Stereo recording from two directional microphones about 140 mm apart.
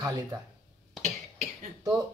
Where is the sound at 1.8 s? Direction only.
25° right (ahead or behind).